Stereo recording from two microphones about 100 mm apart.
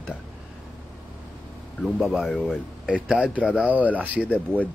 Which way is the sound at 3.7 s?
15° right (ahead or behind).